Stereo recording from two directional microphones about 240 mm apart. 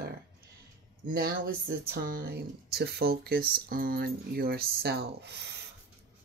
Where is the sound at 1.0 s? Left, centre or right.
Right.